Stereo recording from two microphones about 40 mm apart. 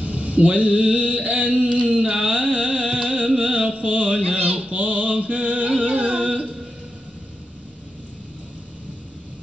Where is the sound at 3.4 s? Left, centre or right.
Right.